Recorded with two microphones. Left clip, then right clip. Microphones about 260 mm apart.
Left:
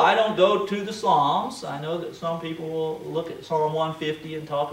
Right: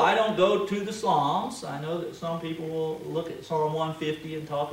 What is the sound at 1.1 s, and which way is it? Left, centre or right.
Speech, left.